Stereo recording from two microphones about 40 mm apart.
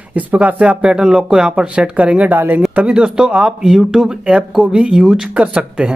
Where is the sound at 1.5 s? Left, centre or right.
Right.